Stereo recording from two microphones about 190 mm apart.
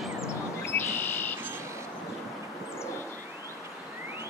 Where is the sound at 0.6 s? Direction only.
10° left (ahead or behind).